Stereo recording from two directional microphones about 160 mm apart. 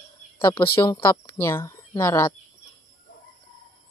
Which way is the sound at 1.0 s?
15° left (ahead or behind).